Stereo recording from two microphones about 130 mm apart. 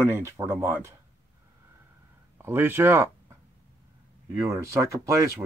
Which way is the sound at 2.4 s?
15° right (ahead or behind).